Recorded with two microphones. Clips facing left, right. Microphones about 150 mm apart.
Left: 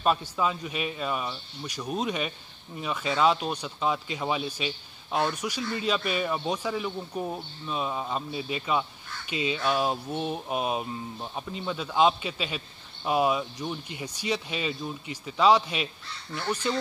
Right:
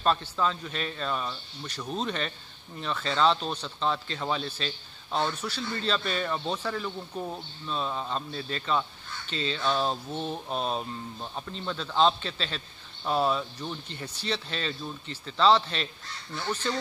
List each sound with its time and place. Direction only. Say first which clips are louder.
0.0 s a man's voice: left 1 dB; 10° left (ahead or behind)